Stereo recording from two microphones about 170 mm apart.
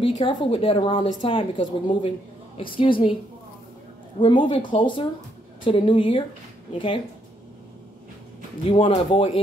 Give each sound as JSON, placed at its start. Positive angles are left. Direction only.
{"t": 0.0, "sound": "a woman's voice", "side_deg": 30}
{"t": 4.2, "sound": "a woman's voice", "side_deg": 30}
{"t": 8.6, "sound": "a woman's voice", "side_deg": 30}